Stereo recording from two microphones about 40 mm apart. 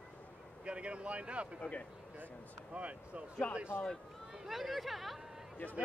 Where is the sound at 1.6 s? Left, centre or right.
Left.